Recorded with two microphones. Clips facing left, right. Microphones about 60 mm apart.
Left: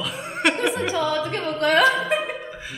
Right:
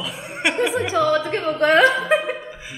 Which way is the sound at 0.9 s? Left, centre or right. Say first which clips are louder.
Right 4 dB; right.